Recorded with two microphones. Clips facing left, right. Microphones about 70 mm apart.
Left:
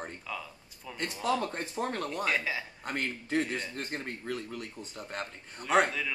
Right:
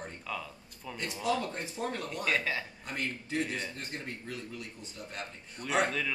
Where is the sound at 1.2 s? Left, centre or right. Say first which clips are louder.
Left 1 dB; left.